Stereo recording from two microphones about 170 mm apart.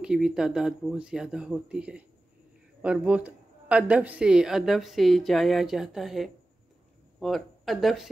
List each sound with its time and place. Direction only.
0.0 s a woman's voice: 5° right (ahead or behind)